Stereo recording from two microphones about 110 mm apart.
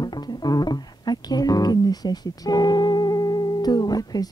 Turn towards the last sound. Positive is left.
turn(degrees=35)  # may be behind; listen again after turning